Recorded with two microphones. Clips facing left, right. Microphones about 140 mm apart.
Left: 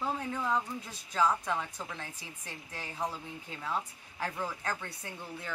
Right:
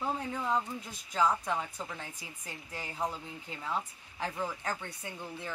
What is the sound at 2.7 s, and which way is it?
Speech, 15° right (ahead or behind).